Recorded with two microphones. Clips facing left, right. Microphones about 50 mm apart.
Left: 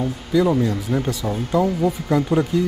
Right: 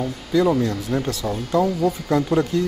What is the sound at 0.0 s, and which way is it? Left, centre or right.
Speech, centre.